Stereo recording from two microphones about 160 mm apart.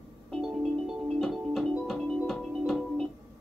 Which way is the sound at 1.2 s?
Centre (ahead or behind).